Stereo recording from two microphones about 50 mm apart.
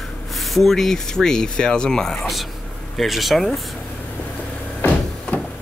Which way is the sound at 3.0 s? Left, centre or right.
Centre.